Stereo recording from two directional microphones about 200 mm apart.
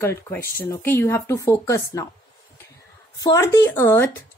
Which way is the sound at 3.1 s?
15° left (ahead or behind).